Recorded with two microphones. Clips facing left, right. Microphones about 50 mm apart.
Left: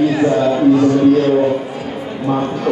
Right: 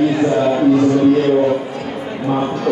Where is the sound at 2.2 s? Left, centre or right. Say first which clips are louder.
Left 1 dB; centre.